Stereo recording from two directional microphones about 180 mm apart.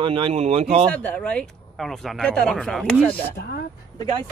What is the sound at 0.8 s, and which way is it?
Speech, 5° left (ahead or behind).